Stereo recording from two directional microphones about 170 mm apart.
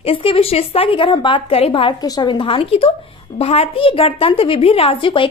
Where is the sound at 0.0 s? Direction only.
35° left (ahead or behind).